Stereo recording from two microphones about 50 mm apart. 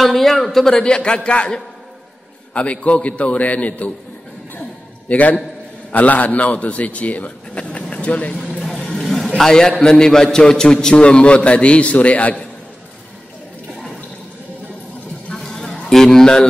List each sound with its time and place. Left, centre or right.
0.0 s a man's voice: centre; by 3.9 s left
5.0 s a man's voice: left
8.9 s vehicle: centre
9.4 s a man's voice: centre; by 12.4 s left
15.3 s a sound: centre